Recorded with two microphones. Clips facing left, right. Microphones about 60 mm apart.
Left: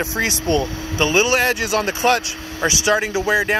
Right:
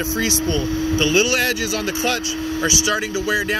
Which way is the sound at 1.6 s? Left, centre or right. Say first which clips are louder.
Left 4 dB; left.